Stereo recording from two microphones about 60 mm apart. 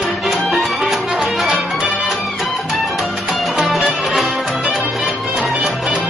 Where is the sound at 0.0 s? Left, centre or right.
Centre.